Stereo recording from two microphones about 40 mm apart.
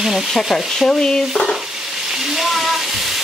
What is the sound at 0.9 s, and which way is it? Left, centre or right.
Stir, centre.